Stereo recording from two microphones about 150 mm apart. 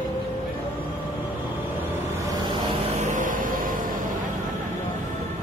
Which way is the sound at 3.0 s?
60° right (ahead or behind).